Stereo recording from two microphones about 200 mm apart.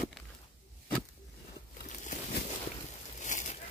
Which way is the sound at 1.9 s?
40° left (ahead or behind).